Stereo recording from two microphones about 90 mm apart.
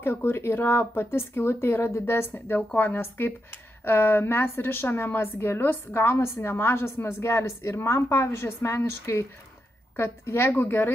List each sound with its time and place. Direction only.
0.0 s a woman's voice: 25° left (ahead or behind)